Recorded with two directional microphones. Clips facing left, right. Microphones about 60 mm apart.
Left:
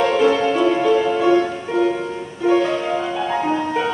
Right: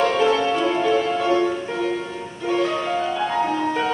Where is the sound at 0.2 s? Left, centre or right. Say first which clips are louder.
Left 3 dB; centre.